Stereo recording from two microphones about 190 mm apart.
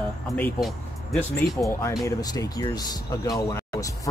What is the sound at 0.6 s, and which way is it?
Speech, centre (ahead or behind).